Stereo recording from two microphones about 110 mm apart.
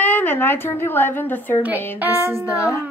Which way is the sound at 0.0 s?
15° left (ahead or behind).